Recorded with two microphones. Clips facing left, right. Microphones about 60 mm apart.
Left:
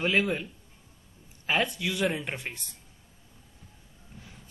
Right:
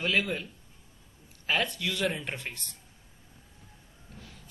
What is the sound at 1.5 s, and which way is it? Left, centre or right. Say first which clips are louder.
Speech: left 2 dB; centre.